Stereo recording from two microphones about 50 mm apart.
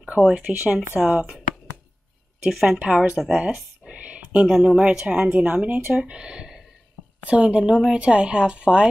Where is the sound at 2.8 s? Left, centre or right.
Centre.